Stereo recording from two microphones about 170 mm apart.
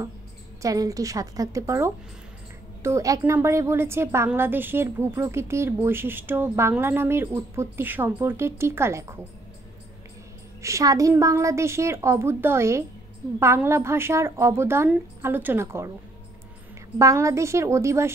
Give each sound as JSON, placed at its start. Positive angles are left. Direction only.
{"t": 0.6, "sound": "a woman's voice", "side_deg": -20}
{"t": 10.6, "sound": "a woman's voice", "side_deg": -20}
{"t": 17.0, "sound": "a woman's voice", "side_deg": -20}